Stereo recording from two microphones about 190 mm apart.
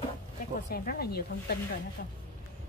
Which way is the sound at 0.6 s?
55° left (ahead or behind).